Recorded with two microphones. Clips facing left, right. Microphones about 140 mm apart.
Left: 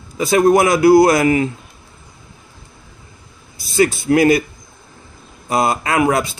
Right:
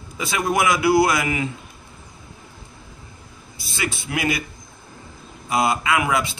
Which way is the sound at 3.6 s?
40° left (ahead or behind).